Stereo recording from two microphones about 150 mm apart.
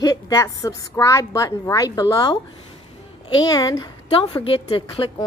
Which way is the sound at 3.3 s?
25° left (ahead or behind).